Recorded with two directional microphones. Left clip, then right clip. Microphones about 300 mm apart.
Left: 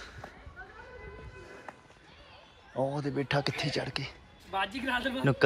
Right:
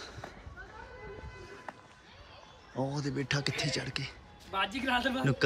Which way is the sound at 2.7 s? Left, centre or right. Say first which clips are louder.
Left 4 dB; centre.